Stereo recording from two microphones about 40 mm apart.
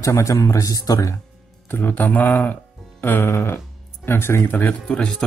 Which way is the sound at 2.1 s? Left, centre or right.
Left.